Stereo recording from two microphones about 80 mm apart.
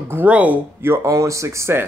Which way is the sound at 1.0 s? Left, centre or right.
Right.